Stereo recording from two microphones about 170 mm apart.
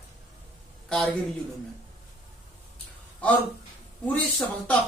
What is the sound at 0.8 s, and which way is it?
Speech, 5° left (ahead or behind).